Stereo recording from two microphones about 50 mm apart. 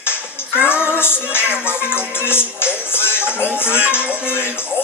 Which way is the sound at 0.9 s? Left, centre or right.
Left.